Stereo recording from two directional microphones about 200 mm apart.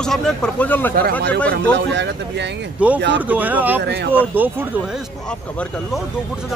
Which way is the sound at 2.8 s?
5° right (ahead or behind).